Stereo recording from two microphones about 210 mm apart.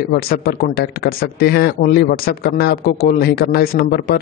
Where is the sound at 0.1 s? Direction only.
45° left (ahead or behind).